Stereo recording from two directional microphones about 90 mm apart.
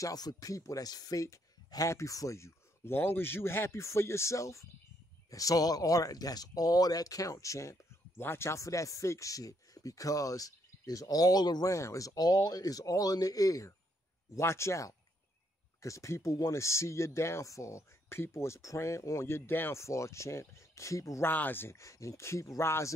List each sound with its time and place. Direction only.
0.0 s speech: 45° left (ahead or behind)
11.7 s speech: 35° left (ahead or behind)
21.3 s speech: 20° left (ahead or behind)